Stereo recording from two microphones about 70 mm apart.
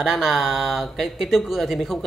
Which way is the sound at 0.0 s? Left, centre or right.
Centre.